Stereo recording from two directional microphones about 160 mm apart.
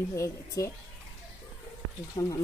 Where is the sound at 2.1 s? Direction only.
20° left (ahead or behind).